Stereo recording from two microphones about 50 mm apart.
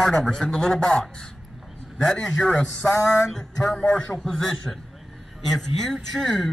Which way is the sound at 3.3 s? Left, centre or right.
Centre.